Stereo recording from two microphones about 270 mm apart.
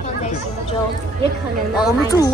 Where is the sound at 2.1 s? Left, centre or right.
Centre.